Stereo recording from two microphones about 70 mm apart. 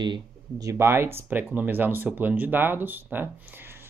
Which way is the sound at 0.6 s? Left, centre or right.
Right.